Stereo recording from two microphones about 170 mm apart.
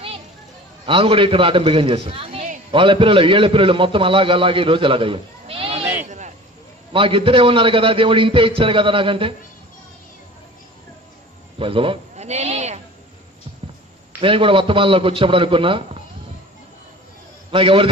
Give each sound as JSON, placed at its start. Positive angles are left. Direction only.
{"t": 0.8, "sound": "a man's voice", "side_deg": -30}
{"t": 6.0, "sound": "a sound", "side_deg": -45}
{"t": 6.9, "sound": "a man's voice", "side_deg": -30}
{"t": 11.5, "sound": "snake", "side_deg": -30}
{"t": 14.2, "sound": "a man's voice", "side_deg": -30}
{"t": 17.5, "sound": "a man's voice", "side_deg": -30}